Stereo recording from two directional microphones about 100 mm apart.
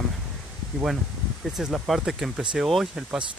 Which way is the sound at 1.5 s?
5° right (ahead or behind).